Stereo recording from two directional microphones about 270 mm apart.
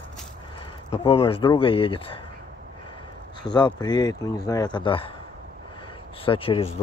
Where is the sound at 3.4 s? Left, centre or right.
Centre.